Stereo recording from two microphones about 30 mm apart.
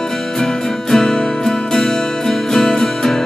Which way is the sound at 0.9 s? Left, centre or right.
Centre.